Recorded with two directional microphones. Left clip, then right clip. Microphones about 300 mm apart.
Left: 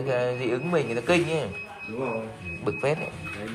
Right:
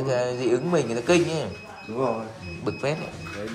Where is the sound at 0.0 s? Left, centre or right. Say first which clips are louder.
Right 1 dB; centre.